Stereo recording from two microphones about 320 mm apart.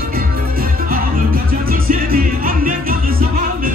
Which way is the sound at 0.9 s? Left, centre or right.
Right.